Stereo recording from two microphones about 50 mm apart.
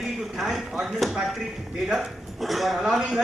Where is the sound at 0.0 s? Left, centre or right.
Centre.